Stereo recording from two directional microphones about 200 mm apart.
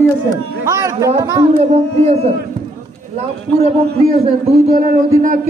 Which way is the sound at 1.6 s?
30° right (ahead or behind).